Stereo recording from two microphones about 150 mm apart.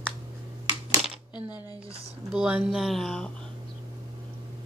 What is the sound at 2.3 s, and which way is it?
Speech, 5° right (ahead or behind).